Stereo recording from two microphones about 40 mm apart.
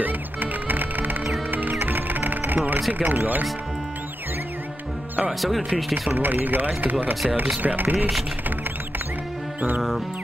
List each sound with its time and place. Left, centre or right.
0.0 s music: right
2.9 s speech: right
6.0 s speech: right